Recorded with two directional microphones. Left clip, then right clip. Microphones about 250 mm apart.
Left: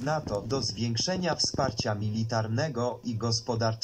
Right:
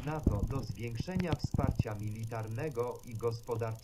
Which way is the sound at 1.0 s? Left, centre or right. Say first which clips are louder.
Left 10 dB; left.